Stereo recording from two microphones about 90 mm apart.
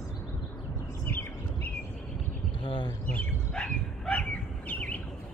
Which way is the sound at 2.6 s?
65° left (ahead or behind).